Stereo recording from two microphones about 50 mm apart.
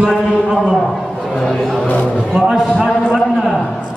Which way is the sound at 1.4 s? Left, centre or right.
Centre.